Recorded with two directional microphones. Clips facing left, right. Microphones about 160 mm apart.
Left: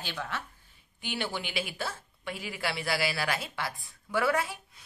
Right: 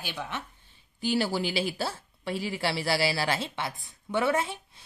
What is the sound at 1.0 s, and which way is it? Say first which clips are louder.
Speech: right 8 dB; 35° right (ahead or behind).